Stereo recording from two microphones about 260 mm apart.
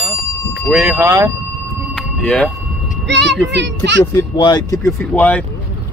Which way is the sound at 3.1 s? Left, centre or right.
Right.